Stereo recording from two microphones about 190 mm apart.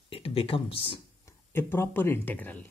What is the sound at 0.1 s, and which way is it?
Speech, 30° left (ahead or behind).